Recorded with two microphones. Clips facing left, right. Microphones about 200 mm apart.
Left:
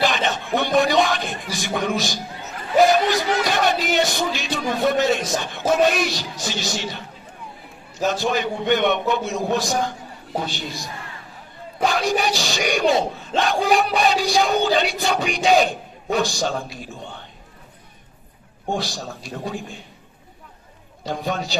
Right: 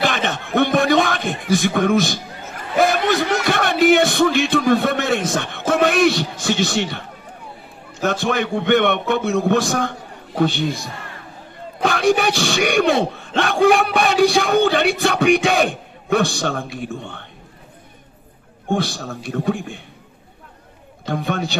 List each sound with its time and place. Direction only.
0.0 s a sound: 55° right (ahead or behind)
5.7 s speech: 60° right (ahead or behind)
11.8 s speech: 60° right (ahead or behind)
18.7 s speech: 60° right (ahead or behind)
21.0 s speech: 60° right (ahead or behind)